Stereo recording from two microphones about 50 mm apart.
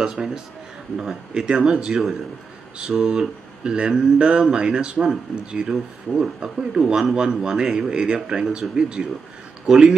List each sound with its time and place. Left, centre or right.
0.0 s speech: centre